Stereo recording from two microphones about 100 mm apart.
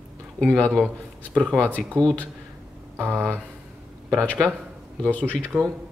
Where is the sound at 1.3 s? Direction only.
10° left (ahead or behind).